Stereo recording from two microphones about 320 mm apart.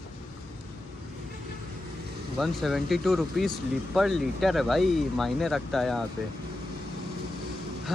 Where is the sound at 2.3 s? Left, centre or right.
Centre.